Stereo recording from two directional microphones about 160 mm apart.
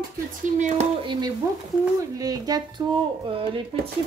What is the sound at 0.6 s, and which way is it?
Speech, 50° right (ahead or behind).